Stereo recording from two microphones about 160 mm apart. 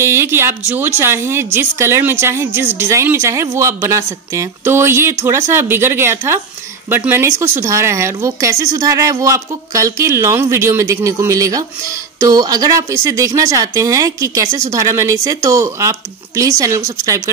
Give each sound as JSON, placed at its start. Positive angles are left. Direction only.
{"t": 0.0, "sound": "a woman's voice", "side_deg": -15}